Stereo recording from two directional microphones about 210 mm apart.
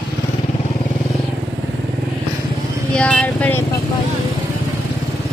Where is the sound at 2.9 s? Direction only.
5° left (ahead or behind).